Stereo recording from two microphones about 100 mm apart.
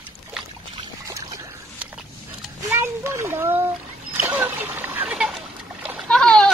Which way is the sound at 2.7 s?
25° right (ahead or behind).